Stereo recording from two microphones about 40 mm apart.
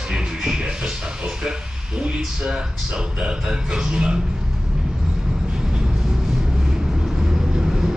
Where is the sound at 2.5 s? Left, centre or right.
Right.